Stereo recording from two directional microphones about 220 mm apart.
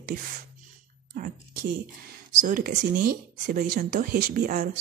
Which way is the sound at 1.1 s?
40° right (ahead or behind).